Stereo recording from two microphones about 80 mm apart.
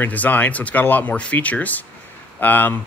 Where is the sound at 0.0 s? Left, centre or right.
Left.